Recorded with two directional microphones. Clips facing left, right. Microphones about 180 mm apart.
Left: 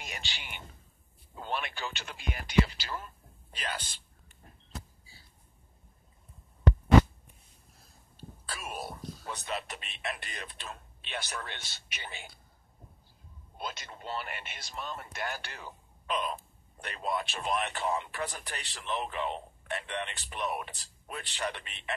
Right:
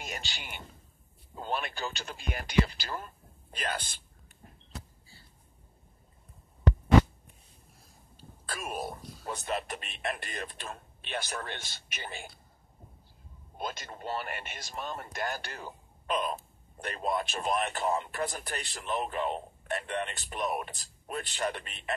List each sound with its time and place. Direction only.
0.0 s speech: 40° right (ahead or behind)
8.2 s a sound: 45° right (ahead or behind)
9.3 s speech: 45° right (ahead or behind)
13.6 s speech: 45° right (ahead or behind)